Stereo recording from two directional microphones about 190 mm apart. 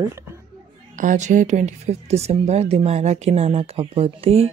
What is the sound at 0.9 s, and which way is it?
Speech, 40° right (ahead or behind).